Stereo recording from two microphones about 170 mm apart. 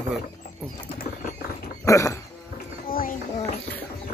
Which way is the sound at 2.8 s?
55° left (ahead or behind).